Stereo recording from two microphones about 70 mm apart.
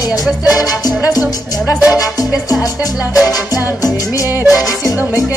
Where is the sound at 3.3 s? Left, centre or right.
Left.